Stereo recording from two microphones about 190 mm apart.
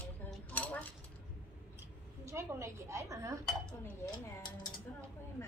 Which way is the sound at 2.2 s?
15° right (ahead or behind).